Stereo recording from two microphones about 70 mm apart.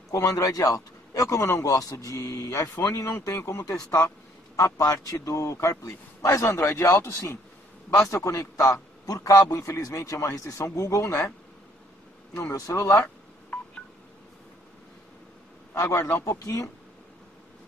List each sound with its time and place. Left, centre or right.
0.1 s a man's voice: left
3.0 s a man's voice: left
12.4 s a man's voice: left
13.0 s telephone dialing: centre
15.7 s a man's voice: left